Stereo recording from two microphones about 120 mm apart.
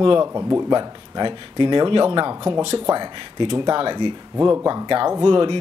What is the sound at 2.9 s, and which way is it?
Speech, 45° right (ahead or behind).